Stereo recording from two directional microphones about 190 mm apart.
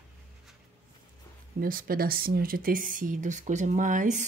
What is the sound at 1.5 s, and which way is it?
Speech, 50° right (ahead or behind).